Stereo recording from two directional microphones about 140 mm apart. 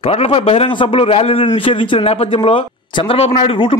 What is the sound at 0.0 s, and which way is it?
A man's voice, 45° left (ahead or behind).